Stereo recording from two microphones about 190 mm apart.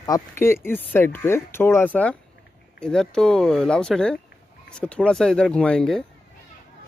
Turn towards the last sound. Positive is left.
turn(degrees=5)  # may be behind; listen again after turning